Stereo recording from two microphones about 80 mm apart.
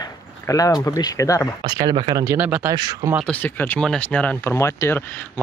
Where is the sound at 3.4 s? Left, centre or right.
Left.